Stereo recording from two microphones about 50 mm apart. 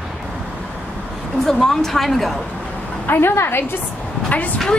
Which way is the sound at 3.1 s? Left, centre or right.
Left.